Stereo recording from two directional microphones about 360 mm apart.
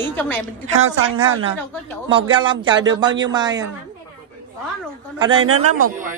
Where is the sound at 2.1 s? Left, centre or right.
Centre.